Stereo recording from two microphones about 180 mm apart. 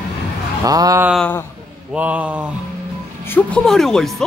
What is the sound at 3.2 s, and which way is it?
Speech, 10° left (ahead or behind).